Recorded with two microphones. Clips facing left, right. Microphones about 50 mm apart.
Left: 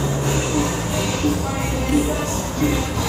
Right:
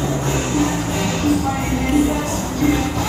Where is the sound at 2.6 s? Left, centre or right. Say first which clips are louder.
Right 4 dB; right.